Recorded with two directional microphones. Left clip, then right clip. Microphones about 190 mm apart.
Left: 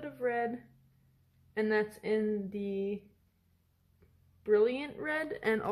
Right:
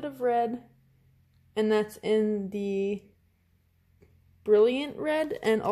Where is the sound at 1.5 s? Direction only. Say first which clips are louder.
Right 5 dB; 30° right (ahead or behind).